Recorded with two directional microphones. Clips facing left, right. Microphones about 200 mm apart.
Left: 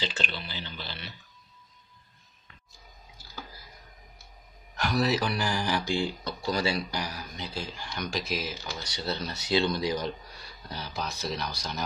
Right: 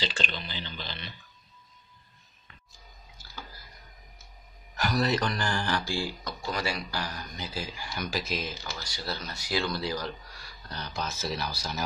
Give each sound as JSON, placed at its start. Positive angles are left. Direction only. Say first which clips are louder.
{"t": 0.0, "sound": "speech", "louder": "even", "side_deg": 10}
{"t": 4.7, "sound": "speech", "louder": "left 1 dB", "side_deg": 0}
{"t": 6.2, "sound": "speech", "louder": "left 4 dB", "side_deg": 30}
{"t": 6.9, "sound": "speech", "louder": "left 1 dB", "side_deg": 10}
{"t": 8.9, "sound": "speech", "louder": "left 5 dB", "side_deg": 25}
{"t": 10.7, "sound": "speech", "louder": "even", "side_deg": 5}